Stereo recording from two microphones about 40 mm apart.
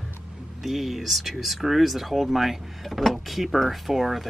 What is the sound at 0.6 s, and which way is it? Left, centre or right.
Speech, centre.